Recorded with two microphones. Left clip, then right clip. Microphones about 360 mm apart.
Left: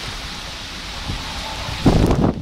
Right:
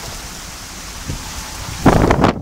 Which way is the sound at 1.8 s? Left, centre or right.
Right.